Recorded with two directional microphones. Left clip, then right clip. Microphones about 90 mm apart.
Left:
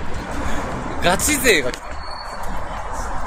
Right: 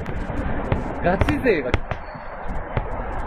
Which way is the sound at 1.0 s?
25° left (ahead or behind).